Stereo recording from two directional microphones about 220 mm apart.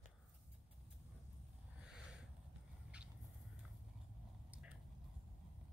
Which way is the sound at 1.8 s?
5° right (ahead or behind).